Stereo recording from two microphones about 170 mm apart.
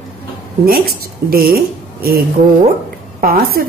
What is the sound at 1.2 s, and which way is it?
Speech, 60° right (ahead or behind).